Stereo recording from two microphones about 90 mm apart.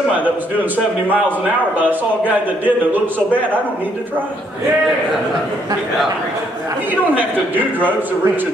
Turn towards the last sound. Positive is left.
turn(degrees=-20)  # may be behind; listen again after turning